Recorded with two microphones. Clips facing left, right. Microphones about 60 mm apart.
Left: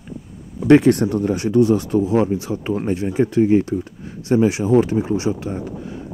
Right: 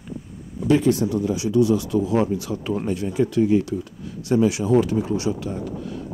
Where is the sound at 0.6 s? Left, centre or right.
Left.